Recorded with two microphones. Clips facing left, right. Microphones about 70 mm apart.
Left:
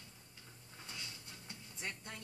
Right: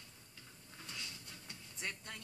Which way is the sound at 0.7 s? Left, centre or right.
Left.